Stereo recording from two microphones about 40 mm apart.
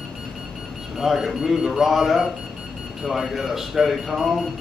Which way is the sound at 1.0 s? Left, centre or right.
Centre.